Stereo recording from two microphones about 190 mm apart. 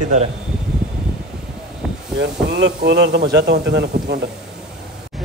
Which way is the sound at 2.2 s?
65° right (ahead or behind).